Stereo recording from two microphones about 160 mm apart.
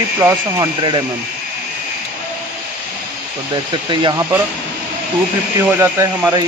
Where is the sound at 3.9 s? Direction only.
30° right (ahead or behind).